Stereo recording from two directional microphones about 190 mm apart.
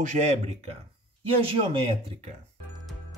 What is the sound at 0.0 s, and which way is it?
Speech, 40° right (ahead or behind).